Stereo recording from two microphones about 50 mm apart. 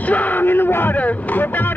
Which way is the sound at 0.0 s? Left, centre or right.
Left.